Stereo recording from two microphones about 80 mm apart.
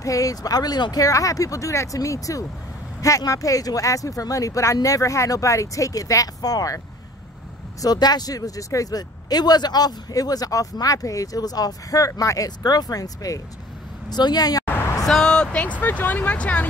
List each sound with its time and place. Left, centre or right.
0.0 s speech: left
1.0 s speech: left
7.8 s speech: left
14.0 s speech: left
15.0 s speech: centre